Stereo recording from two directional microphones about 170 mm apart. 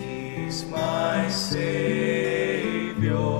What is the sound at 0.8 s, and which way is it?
Music, 5° right (ahead or behind).